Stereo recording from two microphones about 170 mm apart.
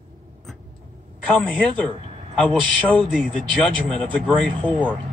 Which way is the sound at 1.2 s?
5° left (ahead or behind).